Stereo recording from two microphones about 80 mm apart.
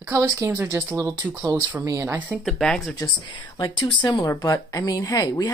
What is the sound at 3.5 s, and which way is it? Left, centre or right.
Speech, left.